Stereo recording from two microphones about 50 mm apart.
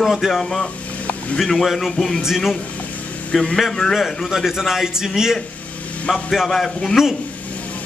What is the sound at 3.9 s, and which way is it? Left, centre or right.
A man's voice, centre.